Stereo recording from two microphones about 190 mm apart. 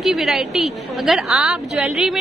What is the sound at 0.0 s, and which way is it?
A woman's voice, centre (ahead or behind).